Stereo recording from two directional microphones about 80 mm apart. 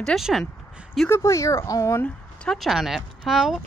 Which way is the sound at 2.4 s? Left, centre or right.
Centre.